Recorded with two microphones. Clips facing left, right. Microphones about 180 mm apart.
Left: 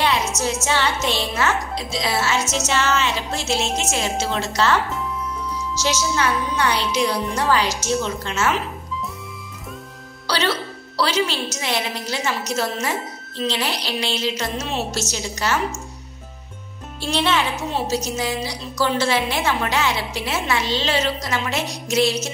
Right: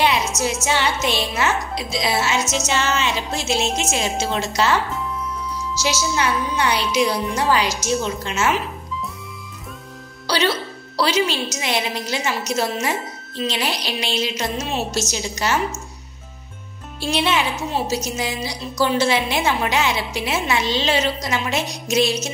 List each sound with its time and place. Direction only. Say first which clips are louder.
0.7 s a woman's voice: right 1 dB; 15° right (ahead or behind)
5.8 s a woman's voice: even; 10° right (ahead or behind)
10.2 s music: right 2 dB; 15° right (ahead or behind)
11.0 s a woman's voice: right 2 dB; 15° right (ahead or behind)
17.0 s a woman's voice: even; 10° right (ahead or behind)